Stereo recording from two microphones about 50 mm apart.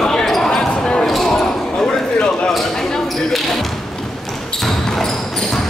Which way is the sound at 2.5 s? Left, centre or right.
Centre.